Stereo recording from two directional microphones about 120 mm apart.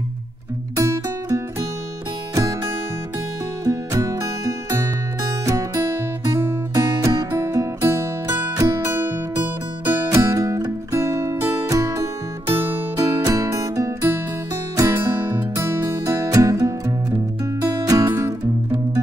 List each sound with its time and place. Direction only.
0.7 s music: 25° right (ahead or behind)
3.6 s music: 30° right (ahead or behind)
12.9 s music: 30° right (ahead or behind)